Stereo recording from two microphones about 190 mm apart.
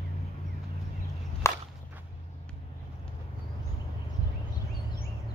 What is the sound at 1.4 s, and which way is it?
Walk, 15° left (ahead or behind).